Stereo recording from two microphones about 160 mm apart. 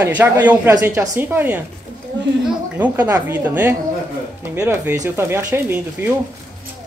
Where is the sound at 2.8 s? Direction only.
10° right (ahead or behind).